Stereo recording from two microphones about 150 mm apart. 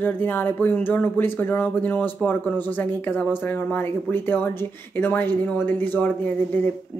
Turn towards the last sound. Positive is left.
turn(degrees=15)  # may be behind; listen again after turning